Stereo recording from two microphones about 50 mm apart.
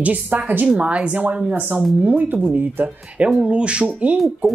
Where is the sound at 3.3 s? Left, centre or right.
Centre.